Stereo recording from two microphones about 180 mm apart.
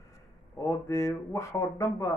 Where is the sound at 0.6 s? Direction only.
15° left (ahead or behind).